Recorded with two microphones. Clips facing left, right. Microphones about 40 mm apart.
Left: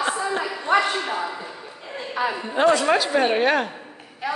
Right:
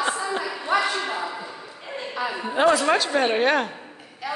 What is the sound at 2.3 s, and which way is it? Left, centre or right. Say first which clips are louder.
A woman's voice: even; centre.